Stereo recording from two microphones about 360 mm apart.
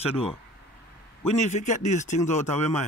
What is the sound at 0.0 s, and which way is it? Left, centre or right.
Speech, centre.